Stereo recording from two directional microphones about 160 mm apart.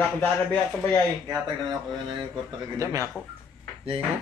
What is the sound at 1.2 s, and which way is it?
Speech, 25° right (ahead or behind).